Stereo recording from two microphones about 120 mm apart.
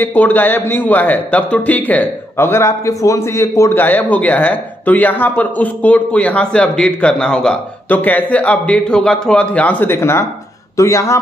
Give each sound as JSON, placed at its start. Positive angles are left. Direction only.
{"t": 0.0, "sound": "a man's voice", "side_deg": 15}